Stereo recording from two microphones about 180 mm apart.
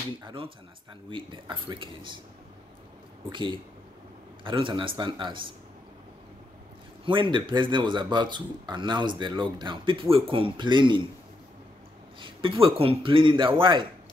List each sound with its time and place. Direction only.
0.2 s speech: 30° right (ahead or behind)
3.3 s speech: 25° right (ahead or behind)
7.1 s speech: 25° right (ahead or behind)
12.2 s speech: 30° right (ahead or behind)